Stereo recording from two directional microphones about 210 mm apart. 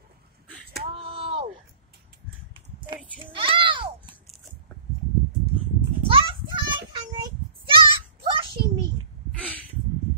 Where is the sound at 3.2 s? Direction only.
25° right (ahead or behind).